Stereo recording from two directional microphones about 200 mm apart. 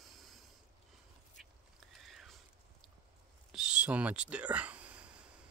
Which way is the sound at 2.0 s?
Centre (ahead or behind).